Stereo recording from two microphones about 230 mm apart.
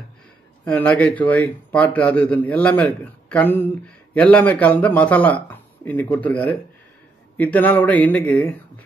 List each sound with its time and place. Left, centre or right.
0.7 s a man's voice: centre